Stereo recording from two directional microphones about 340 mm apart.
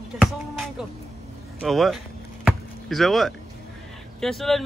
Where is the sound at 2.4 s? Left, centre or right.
Centre.